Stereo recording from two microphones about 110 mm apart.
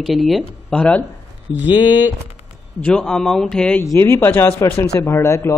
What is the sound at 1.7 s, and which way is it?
Speech, 40° left (ahead or behind).